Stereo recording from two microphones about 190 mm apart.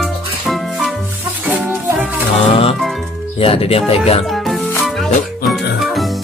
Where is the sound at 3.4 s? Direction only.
30° left (ahead or behind).